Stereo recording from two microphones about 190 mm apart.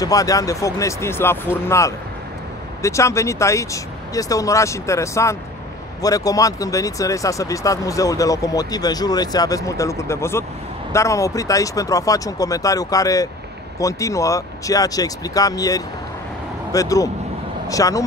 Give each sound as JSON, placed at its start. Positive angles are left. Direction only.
{"t": 0.0, "sound": "speech", "side_deg": 20}